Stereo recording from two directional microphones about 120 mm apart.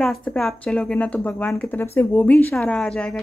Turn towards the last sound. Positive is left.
turn(degrees=5)  # may be behind; listen again after turning